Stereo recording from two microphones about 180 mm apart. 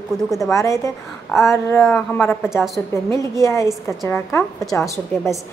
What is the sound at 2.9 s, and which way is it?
A woman's voice, 15° left (ahead or behind).